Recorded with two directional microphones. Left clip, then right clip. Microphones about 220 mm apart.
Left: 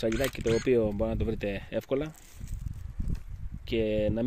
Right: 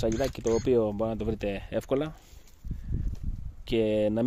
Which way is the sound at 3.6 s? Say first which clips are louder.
Right 2 dB; 15° right (ahead or behind).